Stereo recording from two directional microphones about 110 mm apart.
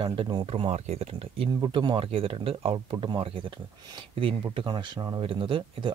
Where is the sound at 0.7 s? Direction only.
75° right (ahead or behind).